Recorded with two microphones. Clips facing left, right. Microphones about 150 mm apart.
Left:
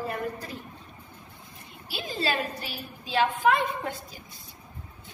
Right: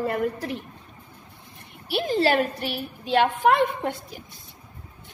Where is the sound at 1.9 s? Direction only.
65° right (ahead or behind).